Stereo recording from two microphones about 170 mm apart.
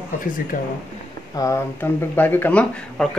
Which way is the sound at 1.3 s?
20° left (ahead or behind).